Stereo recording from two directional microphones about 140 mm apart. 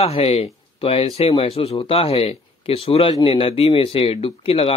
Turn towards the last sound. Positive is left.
turn(degrees=40)  # may be behind; listen again after turning